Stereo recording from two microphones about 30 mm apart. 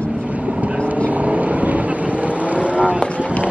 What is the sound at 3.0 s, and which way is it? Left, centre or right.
Boat, left.